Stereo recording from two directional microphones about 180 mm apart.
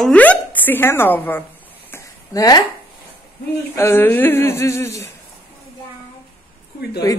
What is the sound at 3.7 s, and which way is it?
A woman's voice, 15° left (ahead or behind).